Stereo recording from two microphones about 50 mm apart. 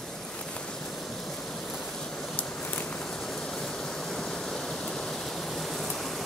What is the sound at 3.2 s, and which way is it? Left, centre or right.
Rain, centre.